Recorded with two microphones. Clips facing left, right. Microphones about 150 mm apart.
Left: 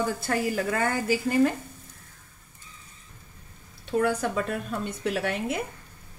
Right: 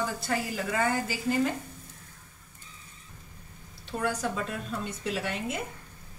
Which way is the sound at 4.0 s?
55° left (ahead or behind).